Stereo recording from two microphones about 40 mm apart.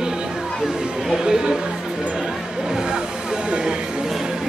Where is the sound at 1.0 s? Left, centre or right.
Centre.